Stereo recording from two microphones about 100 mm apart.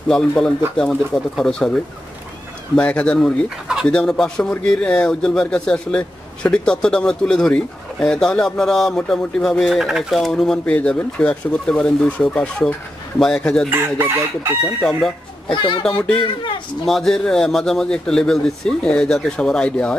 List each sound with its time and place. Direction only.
0.1 s a man's voice: 5° left (ahead or behind)
3.4 s speech: 5° right (ahead or behind)
3.8 s a man's voice: 10° left (ahead or behind)
13.7 s chicken: 20° right (ahead or behind)
14.8 s speech: centre (ahead or behind)
15.5 s speech: 55° left (ahead or behind)
15.9 s a man's voice: 10° left (ahead or behind)